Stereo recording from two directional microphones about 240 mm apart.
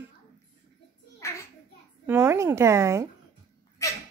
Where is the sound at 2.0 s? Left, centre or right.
Centre.